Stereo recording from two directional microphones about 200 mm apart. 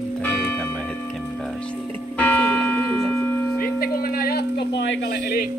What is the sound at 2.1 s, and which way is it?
Church bell, 10° left (ahead or behind).